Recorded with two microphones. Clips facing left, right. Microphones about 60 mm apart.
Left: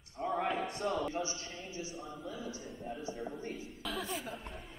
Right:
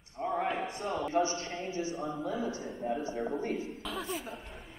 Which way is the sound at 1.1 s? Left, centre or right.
Right.